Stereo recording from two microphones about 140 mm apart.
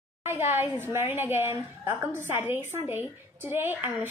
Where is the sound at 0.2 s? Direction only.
15° right (ahead or behind).